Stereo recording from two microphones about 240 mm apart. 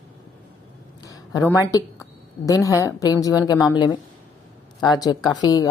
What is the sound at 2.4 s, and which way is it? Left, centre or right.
A woman's voice, centre.